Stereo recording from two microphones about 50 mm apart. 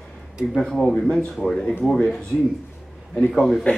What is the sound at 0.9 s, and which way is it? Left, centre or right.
Speech, centre.